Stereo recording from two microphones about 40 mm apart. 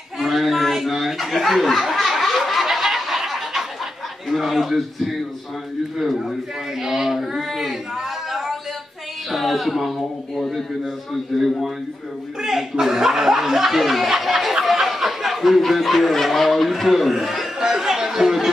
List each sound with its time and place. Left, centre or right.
0.2 s chuckle: centre
4.3 s speech: centre
12.4 s speech: centre
17.6 s chatter: centre